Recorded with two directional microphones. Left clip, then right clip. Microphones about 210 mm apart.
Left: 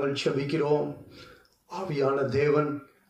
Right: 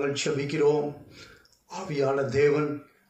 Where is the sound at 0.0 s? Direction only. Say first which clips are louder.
Even; 50° left (ahead or behind).